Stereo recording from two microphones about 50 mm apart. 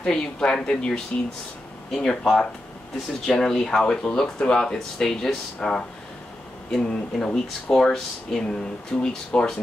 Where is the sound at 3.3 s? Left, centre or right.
Centre.